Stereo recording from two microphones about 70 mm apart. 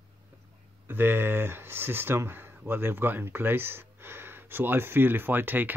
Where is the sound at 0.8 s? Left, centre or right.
Right.